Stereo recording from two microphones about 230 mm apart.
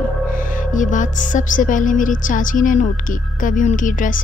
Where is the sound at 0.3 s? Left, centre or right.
Left.